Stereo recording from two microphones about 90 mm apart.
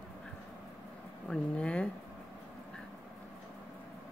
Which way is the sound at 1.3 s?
15° left (ahead or behind).